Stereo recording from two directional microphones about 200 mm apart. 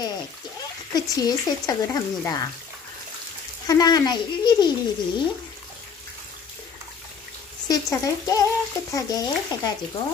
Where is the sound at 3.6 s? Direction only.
20° left (ahead or behind).